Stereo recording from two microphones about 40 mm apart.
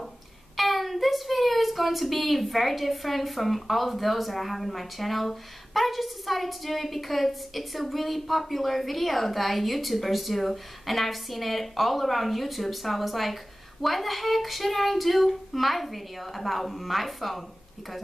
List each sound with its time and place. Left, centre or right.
0.6 s speech: centre